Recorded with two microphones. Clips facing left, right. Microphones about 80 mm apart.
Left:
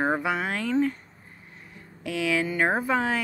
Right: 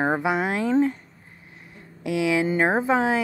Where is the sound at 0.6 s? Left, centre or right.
Right.